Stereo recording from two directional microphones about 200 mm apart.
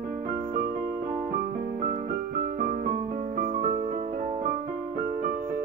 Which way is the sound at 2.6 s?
40° right (ahead or behind).